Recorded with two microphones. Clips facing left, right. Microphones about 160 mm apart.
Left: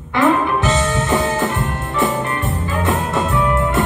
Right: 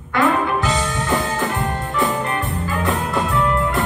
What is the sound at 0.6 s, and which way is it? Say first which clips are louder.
Music: left 4 dB; 20° left (ahead or behind).